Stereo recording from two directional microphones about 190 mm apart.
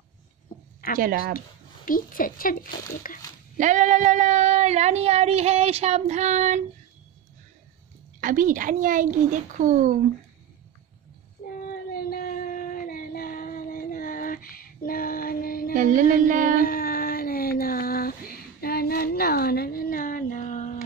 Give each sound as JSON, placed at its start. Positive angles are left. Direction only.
{"t": 0.8, "sound": "speech", "side_deg": 50}
{"t": 3.5, "sound": "speech", "side_deg": -40}
{"t": 8.2, "sound": "a child's voice", "side_deg": -45}
{"t": 11.9, "sound": "a sound", "side_deg": 50}
{"t": 15.7, "sound": "a child's voice", "side_deg": -40}
{"t": 16.5, "sound": "a sound", "side_deg": 50}